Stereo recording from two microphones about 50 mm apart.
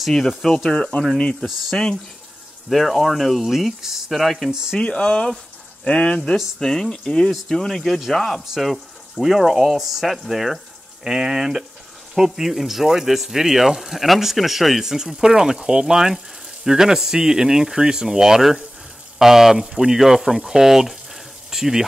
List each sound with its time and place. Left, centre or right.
0.4 s speech: centre
1.7 s speech: centre
2.7 s speech: centre
4.5 s speech: centre
4.7 s speech: centre
6.3 s speech: centre